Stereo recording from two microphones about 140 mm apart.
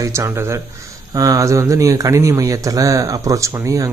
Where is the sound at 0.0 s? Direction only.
20° right (ahead or behind).